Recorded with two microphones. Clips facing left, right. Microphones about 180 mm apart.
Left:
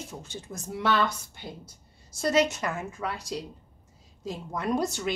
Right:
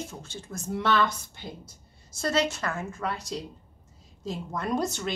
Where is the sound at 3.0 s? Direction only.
5° left (ahead or behind).